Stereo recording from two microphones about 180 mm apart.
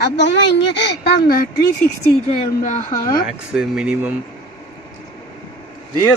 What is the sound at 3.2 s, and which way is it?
Speech, 5° right (ahead or behind).